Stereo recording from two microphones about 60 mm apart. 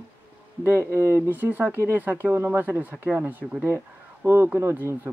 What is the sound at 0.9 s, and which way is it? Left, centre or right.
Speech, right.